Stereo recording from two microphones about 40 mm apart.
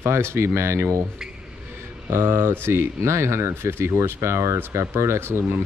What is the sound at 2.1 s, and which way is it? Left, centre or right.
Speech, right.